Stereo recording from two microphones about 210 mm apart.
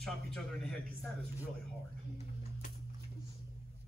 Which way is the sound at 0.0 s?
Centre (ahead or behind).